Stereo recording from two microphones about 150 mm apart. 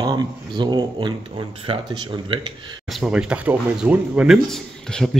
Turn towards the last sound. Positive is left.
turn(degrees=5)  # may be behind; listen again after turning